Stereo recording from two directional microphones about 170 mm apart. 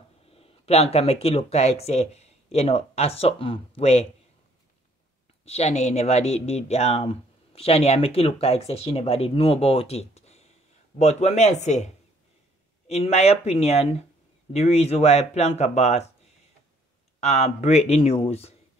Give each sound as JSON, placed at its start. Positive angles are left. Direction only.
{"t": 0.3, "sound": "speech", "side_deg": 35}
{"t": 5.4, "sound": "speech", "side_deg": 40}
{"t": 17.2, "sound": "speech", "side_deg": 40}